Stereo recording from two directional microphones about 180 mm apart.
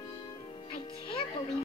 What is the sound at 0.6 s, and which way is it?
Music, 25° left (ahead or behind).